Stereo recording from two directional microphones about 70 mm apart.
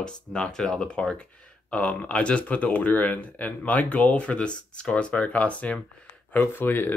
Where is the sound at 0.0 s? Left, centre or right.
Centre.